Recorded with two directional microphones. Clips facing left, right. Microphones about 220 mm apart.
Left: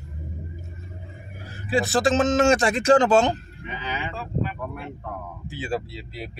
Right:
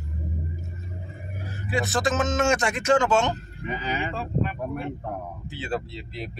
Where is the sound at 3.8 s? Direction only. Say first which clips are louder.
Right 1 dB; 40° right (ahead or behind).